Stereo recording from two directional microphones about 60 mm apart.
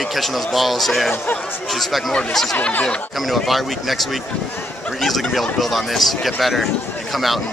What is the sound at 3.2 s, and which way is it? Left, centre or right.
Speech, centre.